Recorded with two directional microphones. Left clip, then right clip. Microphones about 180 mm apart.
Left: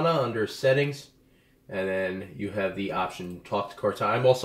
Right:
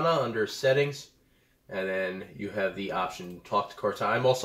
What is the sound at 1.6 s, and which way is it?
Speech, 5° left (ahead or behind).